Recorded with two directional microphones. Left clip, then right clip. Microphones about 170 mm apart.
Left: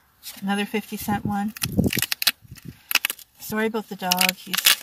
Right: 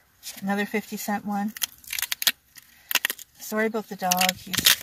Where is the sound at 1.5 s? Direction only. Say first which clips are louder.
Left 6 dB; 5° right (ahead or behind).